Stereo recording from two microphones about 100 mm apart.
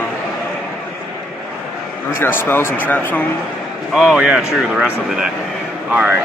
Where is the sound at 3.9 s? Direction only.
5° right (ahead or behind).